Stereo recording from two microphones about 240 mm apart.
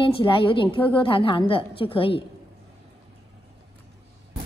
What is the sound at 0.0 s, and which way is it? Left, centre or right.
A woman's voice, left.